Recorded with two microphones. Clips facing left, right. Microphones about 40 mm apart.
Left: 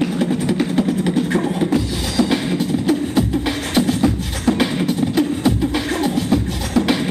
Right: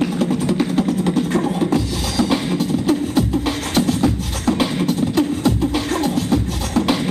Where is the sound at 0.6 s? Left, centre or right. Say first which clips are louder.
Even; centre.